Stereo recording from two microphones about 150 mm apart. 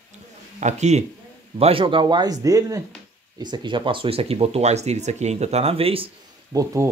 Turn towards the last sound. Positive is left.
turn(degrees=-20)  # may be behind; listen again after turning